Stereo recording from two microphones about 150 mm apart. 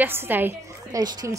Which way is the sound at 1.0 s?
25° right (ahead or behind).